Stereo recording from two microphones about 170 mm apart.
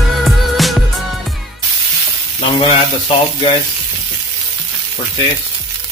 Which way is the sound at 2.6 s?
30° left (ahead or behind).